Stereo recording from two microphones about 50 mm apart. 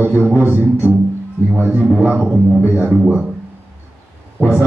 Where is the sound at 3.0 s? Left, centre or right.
Centre.